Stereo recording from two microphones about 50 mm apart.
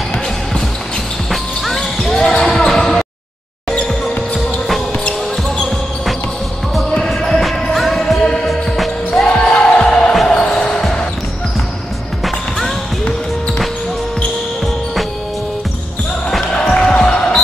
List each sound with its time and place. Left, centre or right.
1.3 s music: centre
1.8 s basketball bounce: centre
3.7 s basketball bounce: left
7.1 s basketball bounce: centre
8.5 s music: centre
9.1 s basketball bounce: centre
16.5 s basketball bounce: centre